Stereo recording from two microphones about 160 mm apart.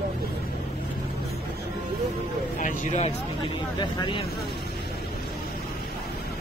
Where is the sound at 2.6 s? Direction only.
50° left (ahead or behind).